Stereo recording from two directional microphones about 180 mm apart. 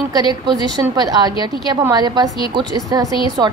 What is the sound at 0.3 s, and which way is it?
A woman's voice, 25° right (ahead or behind).